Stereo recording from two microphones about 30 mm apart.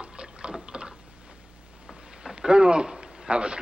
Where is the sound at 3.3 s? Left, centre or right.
Right.